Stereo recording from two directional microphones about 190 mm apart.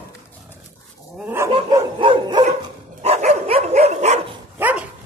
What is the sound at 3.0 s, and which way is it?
Dog, 35° right (ahead or behind).